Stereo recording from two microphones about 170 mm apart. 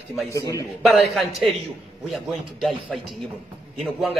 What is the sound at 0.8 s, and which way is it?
A man's voice, centre (ahead or behind).